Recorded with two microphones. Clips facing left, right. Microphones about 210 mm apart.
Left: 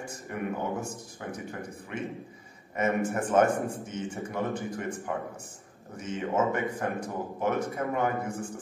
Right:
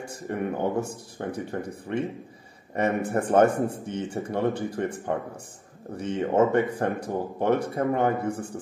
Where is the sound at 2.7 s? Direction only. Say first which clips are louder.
Right 3 dB; 35° right (ahead or behind).